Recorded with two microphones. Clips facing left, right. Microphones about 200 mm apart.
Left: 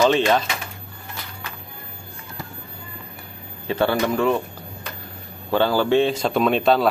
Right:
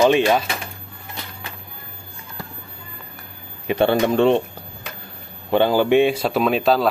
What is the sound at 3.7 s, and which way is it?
Speech, 20° right (ahead or behind).